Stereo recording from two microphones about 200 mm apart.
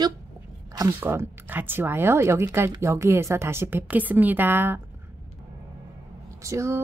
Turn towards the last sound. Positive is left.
turn(degrees=-15)  # may be behind; listen again after turning